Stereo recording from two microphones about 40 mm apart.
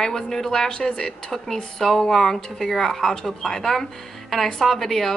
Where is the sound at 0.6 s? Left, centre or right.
Left.